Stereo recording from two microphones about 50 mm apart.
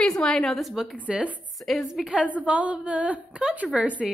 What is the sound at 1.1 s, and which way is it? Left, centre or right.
Speech, right.